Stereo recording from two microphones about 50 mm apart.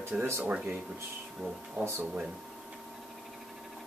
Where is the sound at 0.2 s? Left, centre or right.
Right.